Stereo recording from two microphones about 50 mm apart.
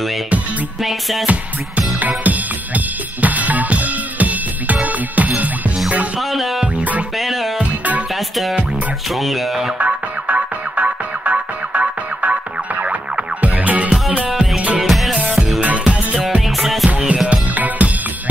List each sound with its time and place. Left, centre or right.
1.2 s music: right
6.3 s music: centre
6.6 s music: right
7.2 s music: centre
9.1 s speech: centre
9.8 s music: right
14.8 s music: centre
15.6 s music: right
16.4 s music: centre
17.1 s music: right